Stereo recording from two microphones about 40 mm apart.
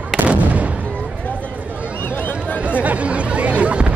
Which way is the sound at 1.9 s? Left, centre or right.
Left.